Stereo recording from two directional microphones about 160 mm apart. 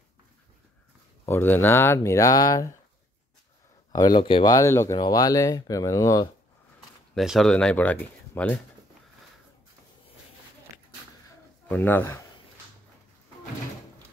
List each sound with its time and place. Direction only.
1.2 s speech: 15° left (ahead or behind)
3.9 s speech: 25° left (ahead or behind)
4.6 s speech: 20° left (ahead or behind)
7.2 s speech: centre (ahead or behind)
11.7 s speech: 10° left (ahead or behind)